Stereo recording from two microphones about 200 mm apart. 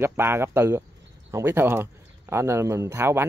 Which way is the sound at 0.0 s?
10° right (ahead or behind).